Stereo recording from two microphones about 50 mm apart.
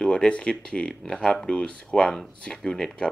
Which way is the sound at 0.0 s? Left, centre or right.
Centre.